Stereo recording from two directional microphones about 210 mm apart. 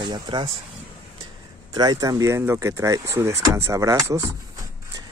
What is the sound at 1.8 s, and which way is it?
Speech, 20° right (ahead or behind).